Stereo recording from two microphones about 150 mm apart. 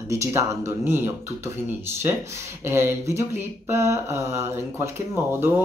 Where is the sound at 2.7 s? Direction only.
15° right (ahead or behind).